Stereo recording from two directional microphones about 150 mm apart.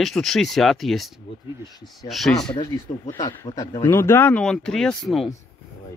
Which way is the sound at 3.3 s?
30° left (ahead or behind).